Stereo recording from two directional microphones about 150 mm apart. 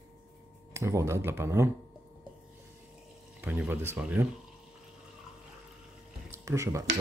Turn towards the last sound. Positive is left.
turn(degrees=-20)  # may be behind; listen again after turning